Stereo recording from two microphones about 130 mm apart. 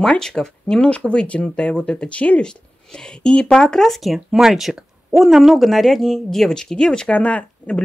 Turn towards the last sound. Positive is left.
turn(degrees=10)  # may be behind; listen again after turning